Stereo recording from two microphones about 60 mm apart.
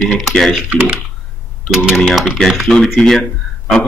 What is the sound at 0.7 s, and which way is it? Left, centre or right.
Speech, right.